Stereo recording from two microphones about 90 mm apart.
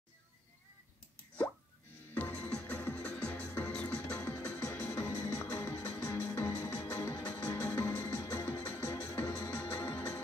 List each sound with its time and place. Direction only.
2.1 s music: 15° left (ahead or behind)
4.2 s music: 35° left (ahead or behind)
7.4 s music: 15° left (ahead or behind)